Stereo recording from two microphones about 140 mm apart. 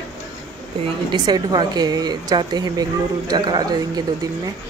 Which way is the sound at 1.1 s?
30° right (ahead or behind).